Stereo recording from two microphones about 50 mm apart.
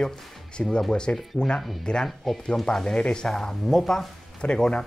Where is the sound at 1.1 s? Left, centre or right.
Left.